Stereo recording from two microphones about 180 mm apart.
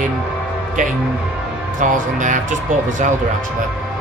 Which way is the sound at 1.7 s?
45° right (ahead or behind).